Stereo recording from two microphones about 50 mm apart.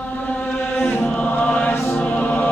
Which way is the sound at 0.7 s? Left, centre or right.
Left.